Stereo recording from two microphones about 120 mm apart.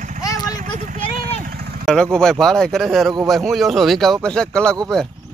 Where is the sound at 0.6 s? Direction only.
85° right.